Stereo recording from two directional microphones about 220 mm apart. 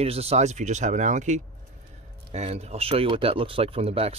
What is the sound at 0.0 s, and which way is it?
Speech, 30° right (ahead or behind).